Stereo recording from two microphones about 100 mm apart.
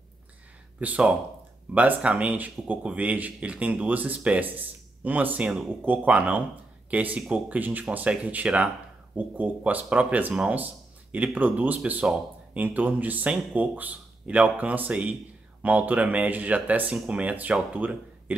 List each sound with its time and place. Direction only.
0.7 s speech: 15° right (ahead or behind)